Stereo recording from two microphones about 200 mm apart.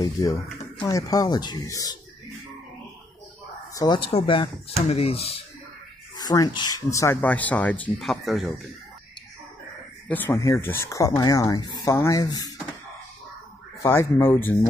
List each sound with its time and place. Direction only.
0.0 s speech: 15° left (ahead or behind)
3.7 s speech: 20° left (ahead or behind)
6.1 s speech: 20° left (ahead or behind); by 8.5 s centre (ahead or behind)
10.0 s speech: 10° left (ahead or behind)
13.8 s speech: 10° left (ahead or behind)